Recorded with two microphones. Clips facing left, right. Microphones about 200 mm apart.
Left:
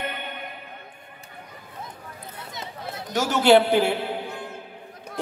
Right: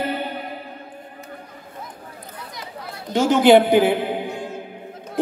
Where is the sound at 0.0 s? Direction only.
35° right (ahead or behind).